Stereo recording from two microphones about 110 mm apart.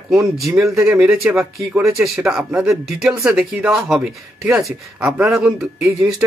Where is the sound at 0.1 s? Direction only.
30° right (ahead or behind).